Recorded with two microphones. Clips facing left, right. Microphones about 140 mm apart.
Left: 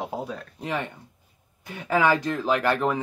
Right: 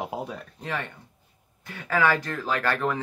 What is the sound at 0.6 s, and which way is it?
Speech, 20° left (ahead or behind).